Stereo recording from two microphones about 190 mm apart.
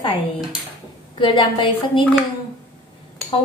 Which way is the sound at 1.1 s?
25° left (ahead or behind).